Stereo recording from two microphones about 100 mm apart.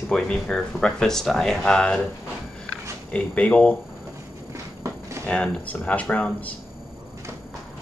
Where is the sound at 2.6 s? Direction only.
10° left (ahead or behind).